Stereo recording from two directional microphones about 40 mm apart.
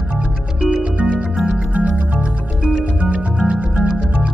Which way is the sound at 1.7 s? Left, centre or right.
Right.